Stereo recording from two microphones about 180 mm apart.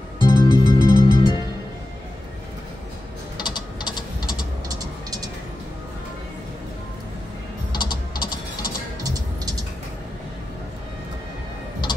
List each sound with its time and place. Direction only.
0.2 s music: 25° left (ahead or behind)
3.3 s ratchet: 25° left (ahead or behind)
4.6 s music: 20° right (ahead or behind)
7.7 s typing: 25° left (ahead or behind)
9.0 s music: 20° right (ahead or behind)